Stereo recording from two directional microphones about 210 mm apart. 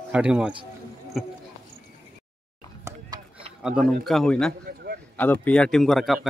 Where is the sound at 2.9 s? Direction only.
20° right (ahead or behind).